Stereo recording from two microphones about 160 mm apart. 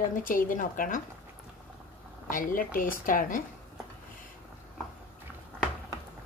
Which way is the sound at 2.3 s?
60° left (ahead or behind).